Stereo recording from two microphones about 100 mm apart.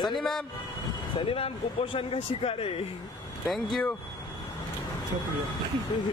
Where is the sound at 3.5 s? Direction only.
Centre (ahead or behind).